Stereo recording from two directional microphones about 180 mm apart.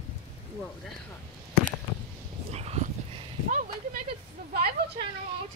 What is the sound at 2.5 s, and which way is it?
Dog, 35° right (ahead or behind).